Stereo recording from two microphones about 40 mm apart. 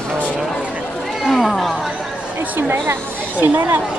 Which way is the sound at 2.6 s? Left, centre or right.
Right.